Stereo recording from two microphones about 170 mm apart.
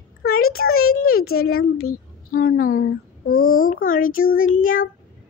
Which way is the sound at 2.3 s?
55° left (ahead or behind).